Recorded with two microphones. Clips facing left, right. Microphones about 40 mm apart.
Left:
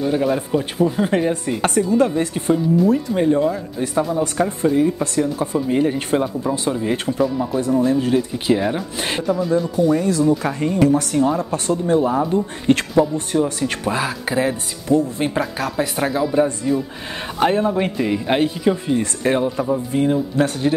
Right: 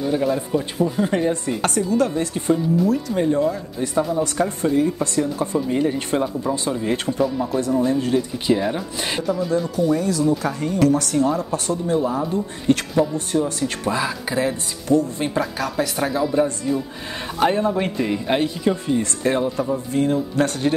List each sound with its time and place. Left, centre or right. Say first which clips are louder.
0.0 s speech: left 2 dB; centre
9.9 s speech: left 3 dB; left
10.8 s speech: left 1 dB; centre
11.5 s speech: left 3 dB; left
13.8 s speech: even; centre